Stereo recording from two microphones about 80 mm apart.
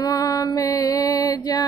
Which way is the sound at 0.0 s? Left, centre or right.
Left.